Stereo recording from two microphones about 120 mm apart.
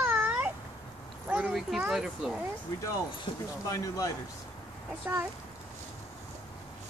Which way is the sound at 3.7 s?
30° left (ahead or behind).